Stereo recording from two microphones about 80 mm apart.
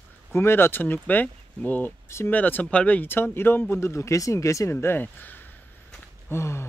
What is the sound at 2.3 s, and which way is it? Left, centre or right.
Speech, left.